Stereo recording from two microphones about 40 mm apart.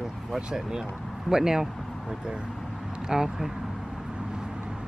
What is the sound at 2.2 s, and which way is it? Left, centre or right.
Speech, right.